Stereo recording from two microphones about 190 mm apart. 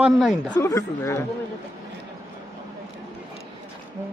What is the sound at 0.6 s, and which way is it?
Speech, 15° left (ahead or behind).